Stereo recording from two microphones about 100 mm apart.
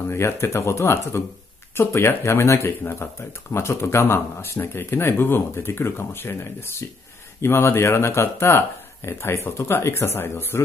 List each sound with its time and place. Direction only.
0.1 s speech: 25° left (ahead or behind)